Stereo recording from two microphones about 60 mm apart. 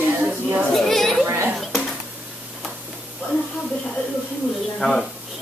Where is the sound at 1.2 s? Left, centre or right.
Right.